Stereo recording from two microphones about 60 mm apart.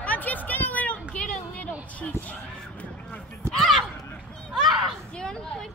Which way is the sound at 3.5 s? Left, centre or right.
Centre.